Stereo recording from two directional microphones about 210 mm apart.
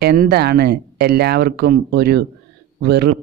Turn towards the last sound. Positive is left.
turn(degrees=-50)  # may be behind; listen again after turning